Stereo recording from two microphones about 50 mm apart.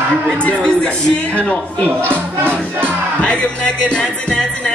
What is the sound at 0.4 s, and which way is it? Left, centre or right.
Music, left.